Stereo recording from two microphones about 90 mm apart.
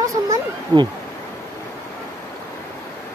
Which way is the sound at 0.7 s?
50° right (ahead or behind).